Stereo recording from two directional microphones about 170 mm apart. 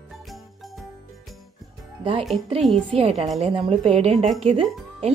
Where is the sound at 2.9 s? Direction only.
35° right (ahead or behind).